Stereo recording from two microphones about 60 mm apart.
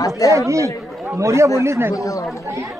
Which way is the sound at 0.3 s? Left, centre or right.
Right.